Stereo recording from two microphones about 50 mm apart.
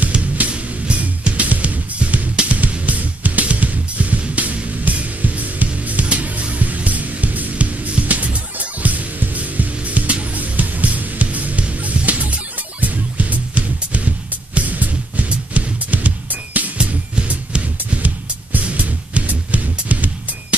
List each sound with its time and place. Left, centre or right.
0.4 s music: right
16.7 s music: right